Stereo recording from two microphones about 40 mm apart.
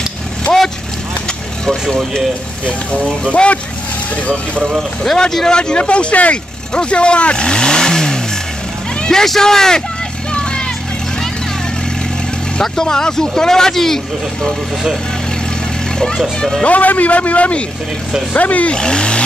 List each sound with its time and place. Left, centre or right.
1.2 s vehicle: centre
3.3 s speech: left
4.6 s speech: centre
5.5 s speech: left
10.3 s vehicle: left
12.6 s speech: centre
16.6 s a man's voice: left
18.7 s speech: left